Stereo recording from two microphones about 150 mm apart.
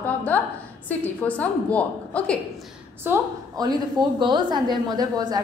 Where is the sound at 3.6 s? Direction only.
25° right (ahead or behind).